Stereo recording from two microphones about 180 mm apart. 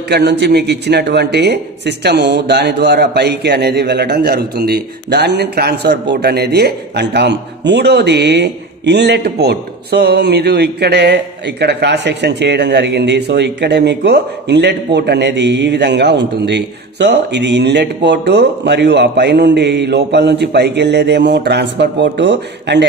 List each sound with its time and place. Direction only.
0.1 s speech: 65° right (ahead or behind)